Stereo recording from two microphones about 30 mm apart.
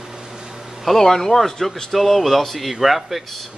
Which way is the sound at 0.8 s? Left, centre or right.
Centre.